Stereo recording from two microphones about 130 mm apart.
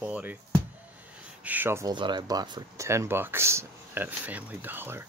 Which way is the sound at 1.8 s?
35° right (ahead or behind).